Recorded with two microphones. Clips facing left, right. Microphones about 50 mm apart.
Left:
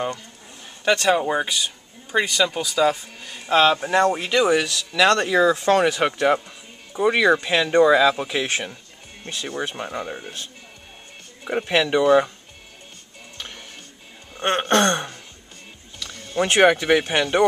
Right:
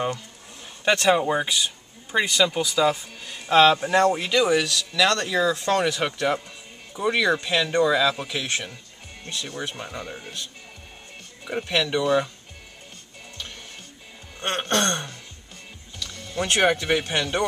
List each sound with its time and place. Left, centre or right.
0.8 s speech: centre
1.3 s speech: centre
8.3 s speech: left
14.3 s a sound: centre
16.0 s speech: centre